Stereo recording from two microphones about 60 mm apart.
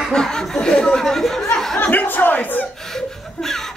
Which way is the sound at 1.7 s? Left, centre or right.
Left.